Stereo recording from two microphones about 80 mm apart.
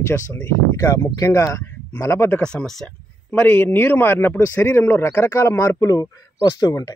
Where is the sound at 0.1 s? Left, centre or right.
Left.